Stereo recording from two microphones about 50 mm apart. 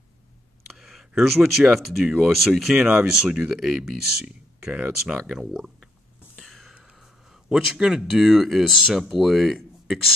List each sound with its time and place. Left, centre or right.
0.7 s a sound: centre
1.6 s speech: centre
2.8 s speech: centre
6.4 s whispering: centre
7.4 s speech: centre
8.1 s speech: centre